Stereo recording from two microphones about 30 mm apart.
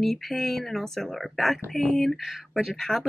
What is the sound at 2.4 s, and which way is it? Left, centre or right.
Speech, centre.